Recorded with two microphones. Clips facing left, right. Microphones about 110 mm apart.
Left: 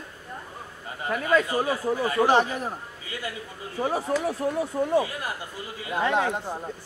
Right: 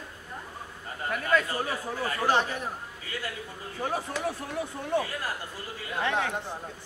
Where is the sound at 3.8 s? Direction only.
35° left (ahead or behind).